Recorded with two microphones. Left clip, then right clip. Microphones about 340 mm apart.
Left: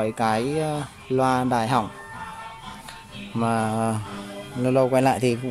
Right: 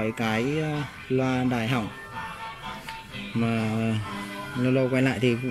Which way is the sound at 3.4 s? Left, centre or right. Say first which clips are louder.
Left 6 dB; left.